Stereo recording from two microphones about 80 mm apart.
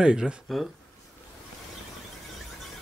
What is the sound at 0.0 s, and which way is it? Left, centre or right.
Speech, centre.